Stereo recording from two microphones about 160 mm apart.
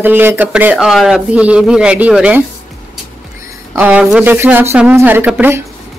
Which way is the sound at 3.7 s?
10° right (ahead or behind).